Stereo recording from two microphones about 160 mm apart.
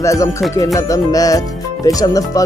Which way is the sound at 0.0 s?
20° left (ahead or behind).